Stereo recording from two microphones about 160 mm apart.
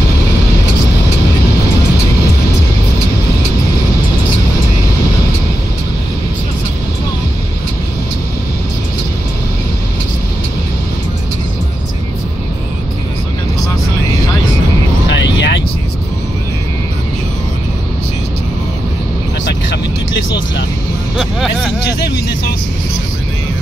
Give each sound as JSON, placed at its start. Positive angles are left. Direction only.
{"t": 15.0, "sound": "vehicle", "side_deg": 90}
{"t": 21.2, "sound": "vehicle", "side_deg": 0}